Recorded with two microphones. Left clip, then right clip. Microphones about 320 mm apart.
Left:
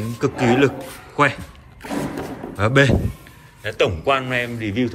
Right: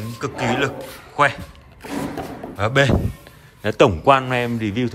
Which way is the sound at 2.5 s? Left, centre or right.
Centre.